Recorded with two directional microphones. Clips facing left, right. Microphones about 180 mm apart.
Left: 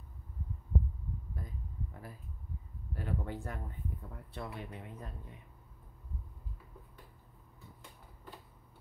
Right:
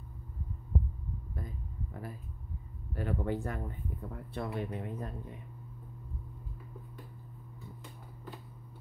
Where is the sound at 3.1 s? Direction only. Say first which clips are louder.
Right 6 dB; 70° right (ahead or behind).